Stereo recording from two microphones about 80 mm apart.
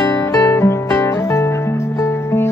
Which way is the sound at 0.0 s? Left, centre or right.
Left.